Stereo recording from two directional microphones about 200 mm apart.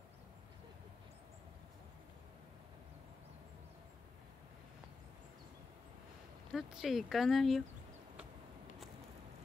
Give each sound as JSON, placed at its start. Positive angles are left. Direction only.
{"t": 6.5, "sound": "speech", "side_deg": 0}